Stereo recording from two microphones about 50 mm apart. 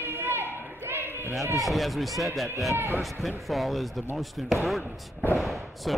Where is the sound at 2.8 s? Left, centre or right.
Right.